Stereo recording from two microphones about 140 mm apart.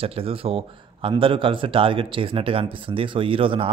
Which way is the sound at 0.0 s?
40° right (ahead or behind).